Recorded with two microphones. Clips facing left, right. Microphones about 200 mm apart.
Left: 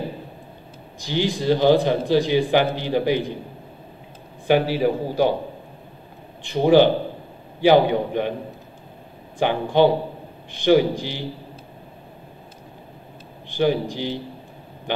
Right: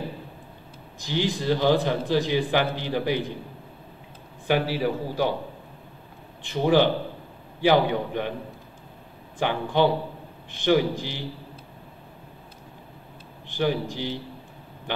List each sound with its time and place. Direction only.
1.0 s a man's voice: 15° left (ahead or behind)
4.5 s a man's voice: 20° left (ahead or behind)
6.5 s a man's voice: 20° left (ahead or behind)
9.4 s a man's voice: 20° left (ahead or behind)
13.6 s a man's voice: 20° left (ahead or behind)